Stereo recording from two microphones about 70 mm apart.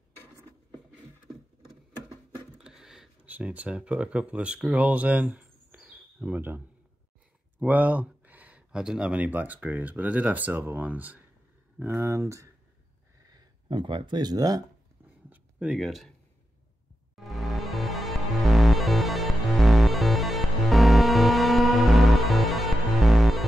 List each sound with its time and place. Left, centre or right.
2.5 s a sound: centre
3.3 s speech: right
5.8 s bird: centre
7.6 s speech: right
13.3 s speech: right
15.2 s a sound: right
15.8 s speech: centre
17.1 s music: centre